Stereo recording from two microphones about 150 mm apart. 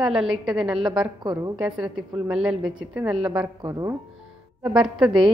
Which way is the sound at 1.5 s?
5° right (ahead or behind).